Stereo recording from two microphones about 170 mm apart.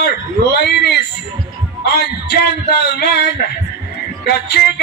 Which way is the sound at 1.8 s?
70° left (ahead or behind).